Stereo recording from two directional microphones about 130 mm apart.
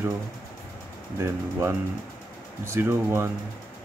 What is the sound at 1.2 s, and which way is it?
Speech, 20° right (ahead or behind).